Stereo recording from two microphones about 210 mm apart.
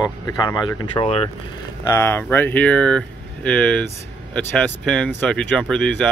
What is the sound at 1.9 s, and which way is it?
Speech, 10° left (ahead or behind).